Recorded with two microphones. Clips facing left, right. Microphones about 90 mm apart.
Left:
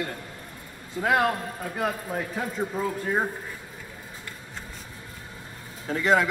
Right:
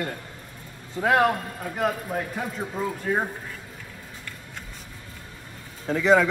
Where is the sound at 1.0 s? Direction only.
5° right (ahead or behind).